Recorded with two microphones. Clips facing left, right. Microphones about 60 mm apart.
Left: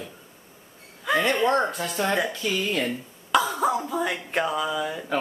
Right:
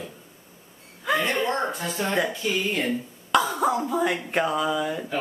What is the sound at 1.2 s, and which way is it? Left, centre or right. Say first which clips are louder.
Speech: left 3 dB; centre.